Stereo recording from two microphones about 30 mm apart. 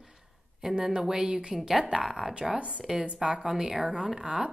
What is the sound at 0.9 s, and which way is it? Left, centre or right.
Speech, right.